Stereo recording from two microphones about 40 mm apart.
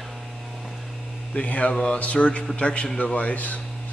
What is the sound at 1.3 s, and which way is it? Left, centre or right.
Speech, left.